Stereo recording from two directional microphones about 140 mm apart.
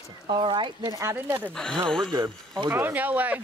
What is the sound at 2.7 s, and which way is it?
Speech, 15° right (ahead or behind).